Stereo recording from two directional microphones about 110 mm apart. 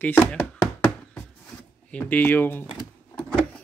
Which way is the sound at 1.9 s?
15° left (ahead or behind).